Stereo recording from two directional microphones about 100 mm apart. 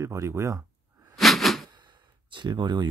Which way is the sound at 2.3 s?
50° right (ahead or behind).